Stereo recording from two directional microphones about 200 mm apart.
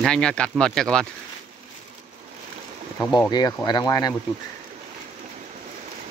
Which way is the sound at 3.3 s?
20° left (ahead or behind).